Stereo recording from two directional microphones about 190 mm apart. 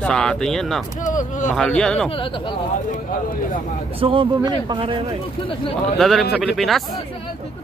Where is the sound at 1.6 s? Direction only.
5° left (ahead or behind).